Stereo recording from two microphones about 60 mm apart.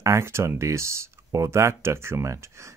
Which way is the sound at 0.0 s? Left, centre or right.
Right.